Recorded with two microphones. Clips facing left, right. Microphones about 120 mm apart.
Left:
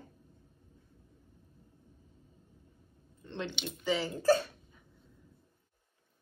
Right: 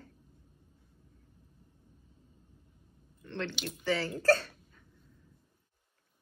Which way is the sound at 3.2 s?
15° left (ahead or behind).